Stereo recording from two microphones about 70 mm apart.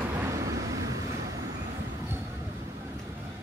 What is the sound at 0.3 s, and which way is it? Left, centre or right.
Vehicle, right.